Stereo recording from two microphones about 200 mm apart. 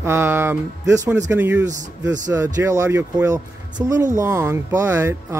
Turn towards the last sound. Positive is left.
turn(degrees=-10)  # may be behind; listen again after turning